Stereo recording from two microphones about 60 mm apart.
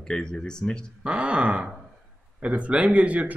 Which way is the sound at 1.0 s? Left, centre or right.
Centre.